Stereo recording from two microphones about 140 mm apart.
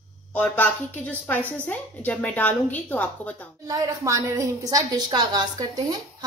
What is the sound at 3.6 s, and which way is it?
A woman's voice, 25° right (ahead or behind).